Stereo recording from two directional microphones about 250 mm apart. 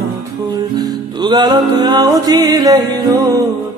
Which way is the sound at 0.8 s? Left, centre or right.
Centre.